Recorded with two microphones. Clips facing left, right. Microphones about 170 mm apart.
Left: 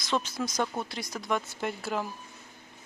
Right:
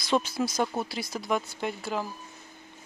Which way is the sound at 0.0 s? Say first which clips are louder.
Right 4 dB; 10° right (ahead or behind).